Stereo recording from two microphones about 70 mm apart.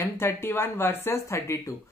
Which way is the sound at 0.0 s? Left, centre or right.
Left.